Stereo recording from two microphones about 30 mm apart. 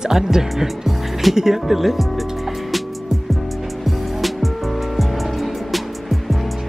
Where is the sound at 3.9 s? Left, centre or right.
Centre.